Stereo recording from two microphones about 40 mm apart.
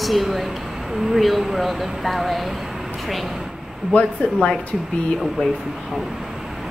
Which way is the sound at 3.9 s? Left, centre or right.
Left.